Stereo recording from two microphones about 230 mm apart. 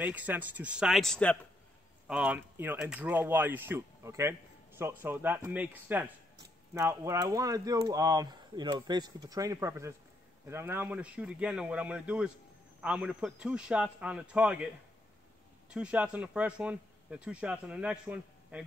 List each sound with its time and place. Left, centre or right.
0.0 s a man's voice: centre
2.0 s a man's voice: centre
15.7 s a man's voice: centre